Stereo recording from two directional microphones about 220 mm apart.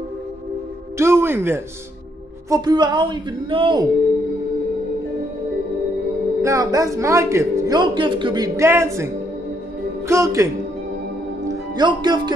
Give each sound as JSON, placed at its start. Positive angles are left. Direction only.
{"t": 0.9, "sound": "music", "side_deg": -10}
{"t": 2.5, "sound": "a woman's voice", "side_deg": -20}
{"t": 6.4, "sound": "speech", "side_deg": -15}